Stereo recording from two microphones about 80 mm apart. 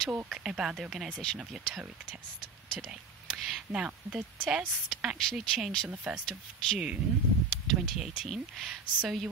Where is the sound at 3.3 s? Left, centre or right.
Centre.